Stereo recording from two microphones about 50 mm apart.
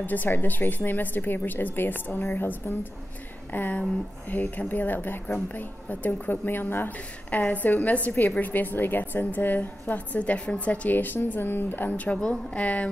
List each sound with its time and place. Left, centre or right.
0.0 s a woman's voice: left
12.5 s a woman's voice: left